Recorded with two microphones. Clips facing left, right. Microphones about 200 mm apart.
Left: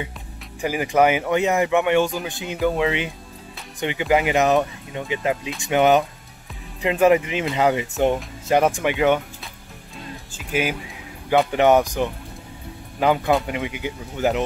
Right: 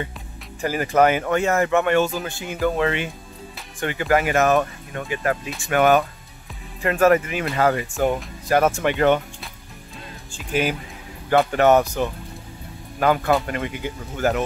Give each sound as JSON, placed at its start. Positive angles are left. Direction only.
{"t": 0.6, "sound": "speech", "side_deg": 15}